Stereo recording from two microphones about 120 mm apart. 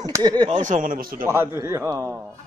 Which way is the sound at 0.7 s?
85° right.